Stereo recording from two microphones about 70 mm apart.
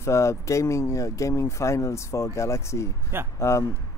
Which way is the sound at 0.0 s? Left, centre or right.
Left.